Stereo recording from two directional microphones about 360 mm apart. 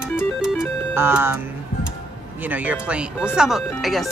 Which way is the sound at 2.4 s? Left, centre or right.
Centre.